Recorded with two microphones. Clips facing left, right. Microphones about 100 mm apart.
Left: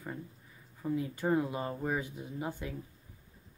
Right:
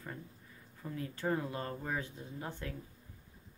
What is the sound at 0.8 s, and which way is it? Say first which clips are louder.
Speech: left 5 dB; 15° left (ahead or behind).